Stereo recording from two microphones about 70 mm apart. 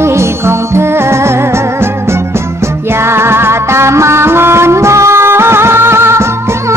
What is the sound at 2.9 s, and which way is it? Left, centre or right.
Music, right.